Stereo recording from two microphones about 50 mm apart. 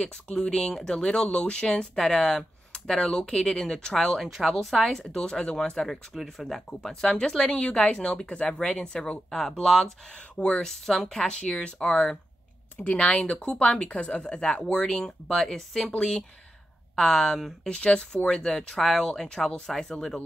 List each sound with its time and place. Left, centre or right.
0.0 s speech: centre
4.2 s speech: centre
5.0 s speech: centre
10.1 s speech: centre
10.7 s speech: centre
15.4 s speech: centre
16.0 s speech: centre